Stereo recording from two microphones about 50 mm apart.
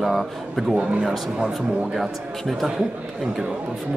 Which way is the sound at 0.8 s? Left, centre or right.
Right.